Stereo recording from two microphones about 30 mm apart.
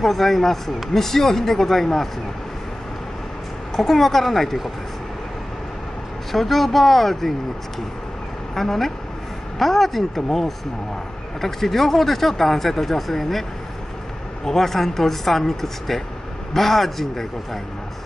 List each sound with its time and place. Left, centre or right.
0.0 s speech: centre
3.7 s speech: centre
6.3 s speech: centre
8.5 s speech: centre
14.6 s speech: centre